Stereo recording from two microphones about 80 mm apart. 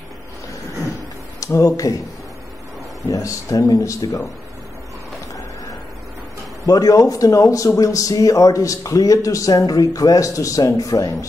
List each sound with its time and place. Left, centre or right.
1.4 s speech: left
3.0 s speech: left
6.6 s speech: left